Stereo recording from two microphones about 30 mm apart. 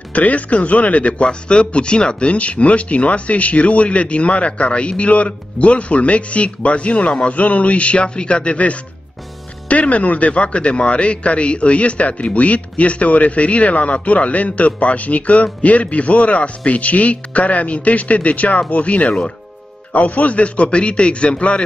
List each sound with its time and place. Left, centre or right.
0.1 s a man's voice: left
1.2 s a man's voice: left
9.7 s a man's voice: left
19.9 s a man's voice: left